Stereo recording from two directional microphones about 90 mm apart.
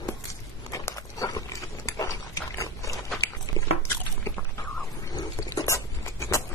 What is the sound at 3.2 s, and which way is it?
Biting, 30° left (ahead or behind).